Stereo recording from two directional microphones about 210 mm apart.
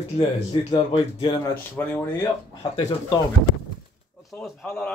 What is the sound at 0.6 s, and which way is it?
Speech, 20° left (ahead or behind).